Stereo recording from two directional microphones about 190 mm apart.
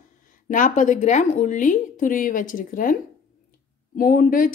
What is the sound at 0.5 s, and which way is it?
A woman's voice, 45° left (ahead or behind).